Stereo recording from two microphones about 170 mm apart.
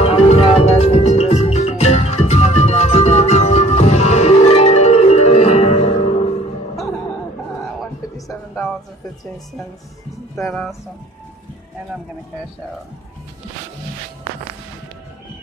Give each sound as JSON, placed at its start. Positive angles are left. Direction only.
{"t": 0.0, "sound": "music", "side_deg": 35}
{"t": 10.5, "sound": "speech", "side_deg": 5}